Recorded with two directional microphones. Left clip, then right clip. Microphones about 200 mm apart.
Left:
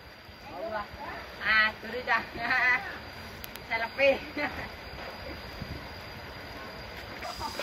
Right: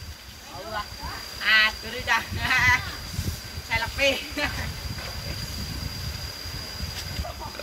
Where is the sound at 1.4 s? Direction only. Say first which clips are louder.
Right 5 dB; 45° left (ahead or behind).